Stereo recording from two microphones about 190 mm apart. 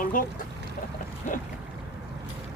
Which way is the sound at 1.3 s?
40° left (ahead or behind).